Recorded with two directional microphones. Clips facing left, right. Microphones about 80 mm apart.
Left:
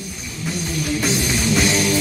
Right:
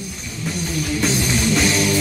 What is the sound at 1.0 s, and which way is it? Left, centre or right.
Music, centre.